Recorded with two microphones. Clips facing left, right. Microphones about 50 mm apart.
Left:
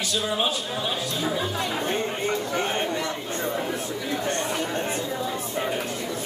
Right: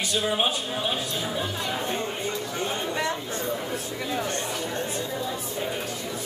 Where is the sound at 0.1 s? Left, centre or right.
Right.